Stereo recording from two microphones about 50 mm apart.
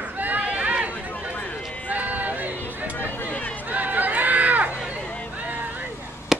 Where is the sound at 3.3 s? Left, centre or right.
Left.